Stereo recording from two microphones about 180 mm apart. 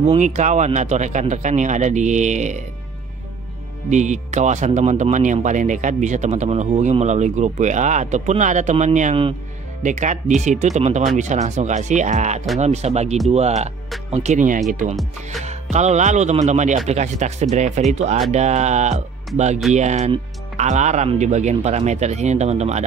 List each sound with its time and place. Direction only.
0.0 s speech: 40° right (ahead or behind)
3.9 s speech: 40° right (ahead or behind)